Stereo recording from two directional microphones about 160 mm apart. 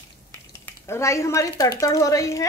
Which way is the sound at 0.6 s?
15° left (ahead or behind).